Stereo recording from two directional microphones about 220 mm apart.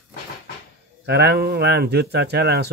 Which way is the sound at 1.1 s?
45° right (ahead or behind).